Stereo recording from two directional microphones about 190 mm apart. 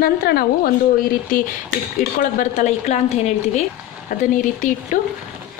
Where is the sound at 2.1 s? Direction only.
40° left (ahead or behind).